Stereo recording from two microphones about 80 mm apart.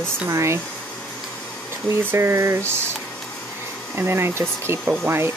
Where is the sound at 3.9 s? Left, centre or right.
Right.